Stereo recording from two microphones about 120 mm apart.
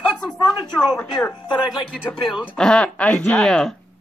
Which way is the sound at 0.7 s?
5° left (ahead or behind).